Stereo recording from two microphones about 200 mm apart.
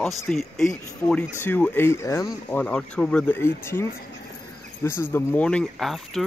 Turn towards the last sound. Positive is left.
turn(degrees=0)  # may be behind; listen again after turning